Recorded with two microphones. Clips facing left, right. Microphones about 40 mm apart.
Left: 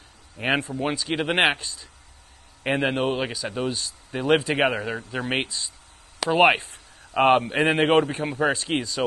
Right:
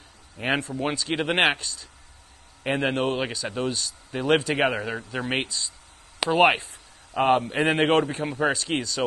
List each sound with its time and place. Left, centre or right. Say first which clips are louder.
0.4 s speech: left 1 dB; centre
7.2 s a man's voice: left 3 dB; left
7.5 s speech: left 2 dB; centre